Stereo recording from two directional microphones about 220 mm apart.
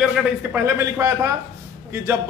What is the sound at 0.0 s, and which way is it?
A man's voice, 5° right (ahead or behind).